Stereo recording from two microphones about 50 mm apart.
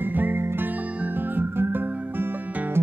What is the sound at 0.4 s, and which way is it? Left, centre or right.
Music, right.